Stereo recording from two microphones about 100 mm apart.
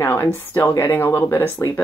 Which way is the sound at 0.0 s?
20° left (ahead or behind).